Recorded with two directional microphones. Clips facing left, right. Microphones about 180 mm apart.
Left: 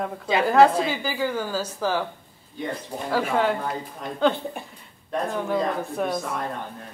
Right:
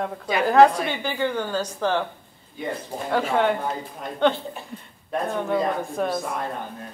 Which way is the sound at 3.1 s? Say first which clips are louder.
Right 1 dB; centre (ahead or behind).